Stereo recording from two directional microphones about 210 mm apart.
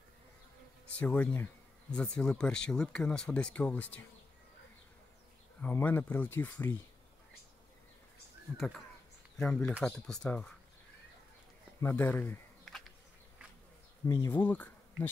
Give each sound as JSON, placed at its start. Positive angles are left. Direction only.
{"t": 0.9, "sound": "speech", "side_deg": 10}
{"t": 5.6, "sound": "speech", "side_deg": 10}
{"t": 9.4, "sound": "speech", "side_deg": 5}
{"t": 11.8, "sound": "a sound", "side_deg": 10}
{"t": 14.0, "sound": "speech", "side_deg": 15}